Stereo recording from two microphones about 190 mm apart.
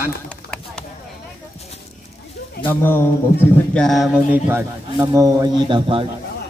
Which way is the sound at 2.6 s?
10° left (ahead or behind).